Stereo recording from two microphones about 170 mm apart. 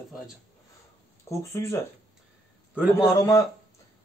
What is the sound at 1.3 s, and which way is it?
Speech, 15° left (ahead or behind).